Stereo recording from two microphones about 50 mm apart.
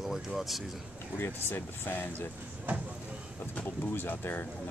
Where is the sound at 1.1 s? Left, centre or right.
Left.